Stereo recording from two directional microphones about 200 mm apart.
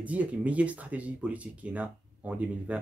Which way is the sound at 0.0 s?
5° right (ahead or behind).